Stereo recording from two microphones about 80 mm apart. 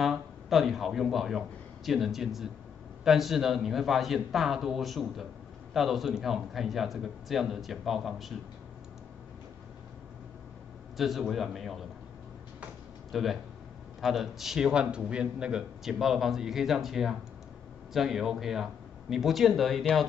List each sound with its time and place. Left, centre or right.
0.0 s a man's voice: centre
11.0 s a man's voice: centre
13.1 s a man's voice: centre